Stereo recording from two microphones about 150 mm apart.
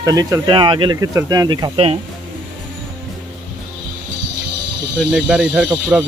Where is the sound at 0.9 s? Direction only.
20° right (ahead or behind).